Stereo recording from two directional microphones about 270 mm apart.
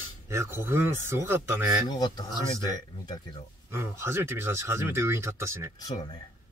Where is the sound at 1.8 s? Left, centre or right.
Centre.